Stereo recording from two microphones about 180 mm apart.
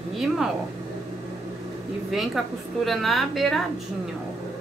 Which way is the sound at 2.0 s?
Centre (ahead or behind).